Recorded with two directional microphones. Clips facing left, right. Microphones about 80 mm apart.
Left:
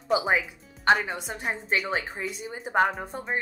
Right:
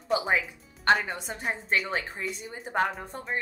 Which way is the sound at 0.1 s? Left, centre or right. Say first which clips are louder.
Left 2 dB; centre.